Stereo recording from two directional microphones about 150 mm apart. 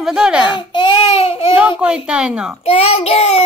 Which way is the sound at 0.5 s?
30° left (ahead or behind).